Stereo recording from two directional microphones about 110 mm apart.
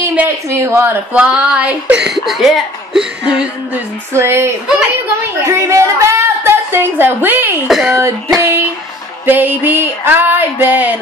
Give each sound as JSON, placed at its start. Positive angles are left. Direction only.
{"t": 0.5, "sound": "speech", "side_deg": -25}
{"t": 1.1, "sound": "speech", "side_deg": -10}
{"t": 4.1, "sound": "a woman's voice", "side_deg": -25}
{"t": 7.6, "sound": "speech", "side_deg": 0}
{"t": 8.4, "sound": "speech", "side_deg": -25}